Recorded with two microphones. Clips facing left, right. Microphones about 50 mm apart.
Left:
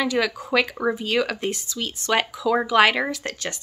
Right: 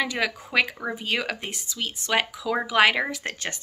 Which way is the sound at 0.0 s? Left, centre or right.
Centre.